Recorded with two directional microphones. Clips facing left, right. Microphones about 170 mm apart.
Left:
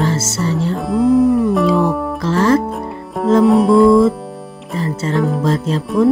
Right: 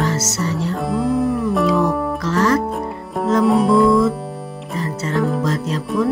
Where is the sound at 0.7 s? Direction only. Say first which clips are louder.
Left 7 dB; centre (ahead or behind).